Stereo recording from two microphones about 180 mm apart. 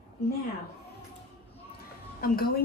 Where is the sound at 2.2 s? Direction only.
55° left (ahead or behind).